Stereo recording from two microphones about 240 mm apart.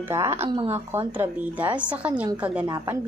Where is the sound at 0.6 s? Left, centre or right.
Centre.